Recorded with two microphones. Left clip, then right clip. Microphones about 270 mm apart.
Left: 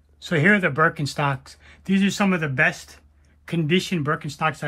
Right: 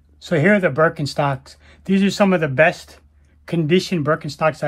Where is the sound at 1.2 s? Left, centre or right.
Centre.